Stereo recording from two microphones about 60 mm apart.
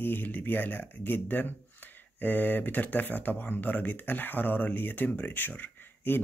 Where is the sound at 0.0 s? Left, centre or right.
Left.